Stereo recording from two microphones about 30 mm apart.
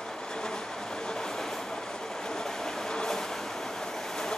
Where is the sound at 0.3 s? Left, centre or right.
Left.